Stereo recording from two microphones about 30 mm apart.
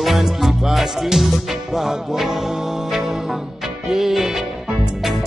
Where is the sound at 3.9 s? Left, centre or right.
Centre.